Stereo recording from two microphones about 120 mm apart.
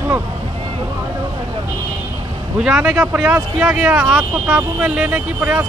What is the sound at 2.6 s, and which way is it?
Speech, 5° right (ahead or behind).